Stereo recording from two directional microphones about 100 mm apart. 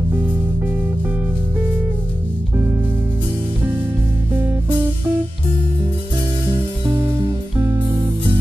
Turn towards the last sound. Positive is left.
turn(degrees=-25)  # may be behind; listen again after turning